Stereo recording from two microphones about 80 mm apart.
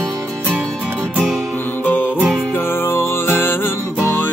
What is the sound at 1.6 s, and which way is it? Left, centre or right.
Music, left.